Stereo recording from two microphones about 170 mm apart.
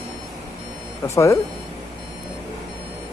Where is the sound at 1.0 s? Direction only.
20° left (ahead or behind).